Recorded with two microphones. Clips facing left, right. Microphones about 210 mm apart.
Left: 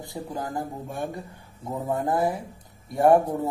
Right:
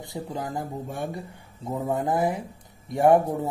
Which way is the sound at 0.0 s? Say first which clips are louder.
Even; 20° right (ahead or behind).